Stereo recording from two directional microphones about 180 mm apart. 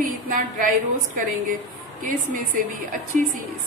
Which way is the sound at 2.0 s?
45° right (ahead or behind).